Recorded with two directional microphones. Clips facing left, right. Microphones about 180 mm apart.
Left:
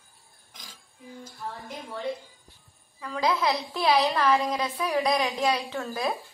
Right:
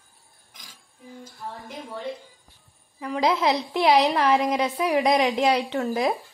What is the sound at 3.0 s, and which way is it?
A woman's voice, 20° right (ahead or behind).